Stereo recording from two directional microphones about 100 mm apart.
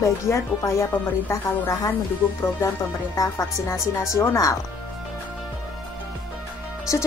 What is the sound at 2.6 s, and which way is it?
A woman's voice, 30° left (ahead or behind).